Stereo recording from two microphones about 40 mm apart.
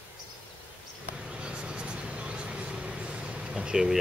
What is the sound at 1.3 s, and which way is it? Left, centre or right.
Vehicle, right.